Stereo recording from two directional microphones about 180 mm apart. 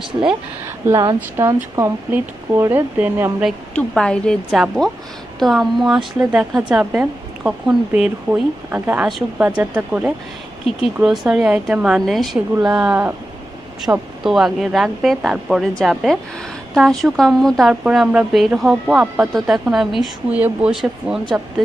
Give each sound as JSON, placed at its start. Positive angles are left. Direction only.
{"t": 0.3, "sound": "a woman's voice", "side_deg": -15}
{"t": 3.4, "sound": "a woman's voice", "side_deg": 5}